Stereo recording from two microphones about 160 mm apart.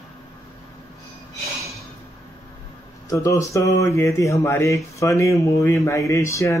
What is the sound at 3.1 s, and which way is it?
Speech, 20° left (ahead or behind).